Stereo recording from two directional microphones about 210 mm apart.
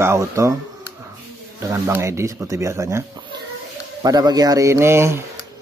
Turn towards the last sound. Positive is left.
turn(degrees=-10)  # may be behind; listen again after turning